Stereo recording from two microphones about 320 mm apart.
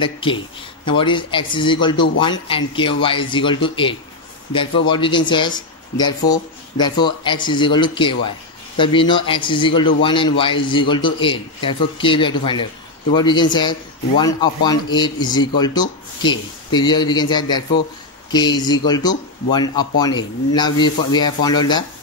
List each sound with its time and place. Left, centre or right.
0.0 s a man's voice: centre